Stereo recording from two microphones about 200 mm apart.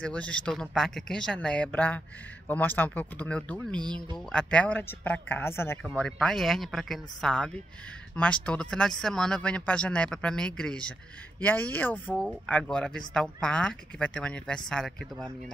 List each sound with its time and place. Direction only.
0.0 s speech: 5° left (ahead or behind)
3.7 s speech: 20° right (ahead or behind)
4.3 s speech: 5° left (ahead or behind)